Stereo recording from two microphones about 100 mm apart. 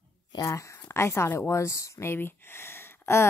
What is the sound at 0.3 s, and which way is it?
Speech, 35° left (ahead or behind).